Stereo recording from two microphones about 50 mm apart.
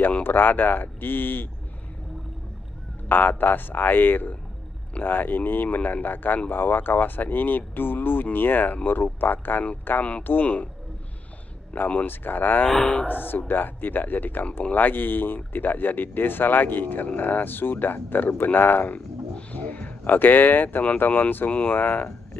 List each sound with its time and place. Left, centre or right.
0.2 s speech: left
3.1 s speech: left
10.4 s speech: left
11.7 s speech: left
12.6 s speech: centre
13.0 s speech: left
19.5 s a sound: left
21.0 s speech: left